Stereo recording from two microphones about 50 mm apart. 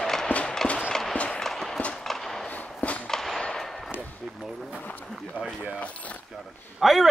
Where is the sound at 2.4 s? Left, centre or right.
Left.